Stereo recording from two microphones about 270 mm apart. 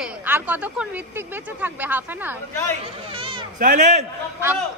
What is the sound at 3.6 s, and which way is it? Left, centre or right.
Speech, right.